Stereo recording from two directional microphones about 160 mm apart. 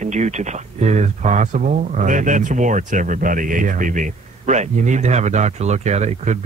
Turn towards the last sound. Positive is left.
turn(degrees=-45)  # may be behind; listen again after turning